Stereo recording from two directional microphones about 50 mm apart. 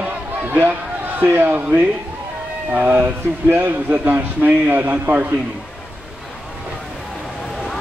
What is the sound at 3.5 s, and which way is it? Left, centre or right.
A man's voice, right.